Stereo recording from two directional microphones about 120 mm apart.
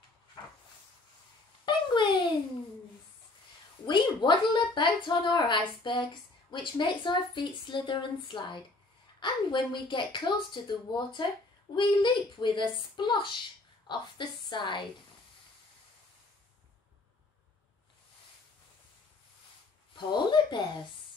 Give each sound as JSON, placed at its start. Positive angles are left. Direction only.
{"t": 1.7, "sound": "a sound", "side_deg": 40}
{"t": 3.8, "sound": "a woman's voice", "side_deg": 40}
{"t": 20.0, "sound": "a woman's voice", "side_deg": 40}